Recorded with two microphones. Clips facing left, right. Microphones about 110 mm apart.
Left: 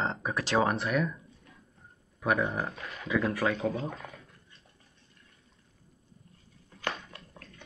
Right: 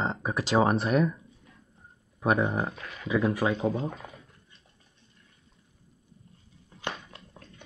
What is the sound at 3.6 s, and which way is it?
Speech, 30° right (ahead or behind).